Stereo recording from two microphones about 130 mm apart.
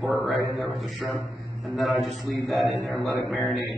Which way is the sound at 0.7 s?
Centre (ahead or behind).